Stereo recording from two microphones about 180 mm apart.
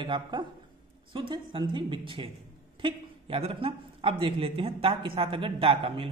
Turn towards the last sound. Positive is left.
turn(degrees=-30)  # may be behind; listen again after turning